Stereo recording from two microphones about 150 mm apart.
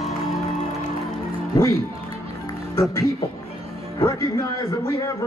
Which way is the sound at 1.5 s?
20° left (ahead or behind).